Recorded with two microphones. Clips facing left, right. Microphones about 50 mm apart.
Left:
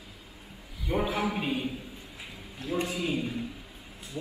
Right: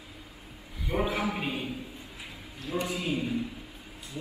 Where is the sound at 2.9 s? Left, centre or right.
Centre.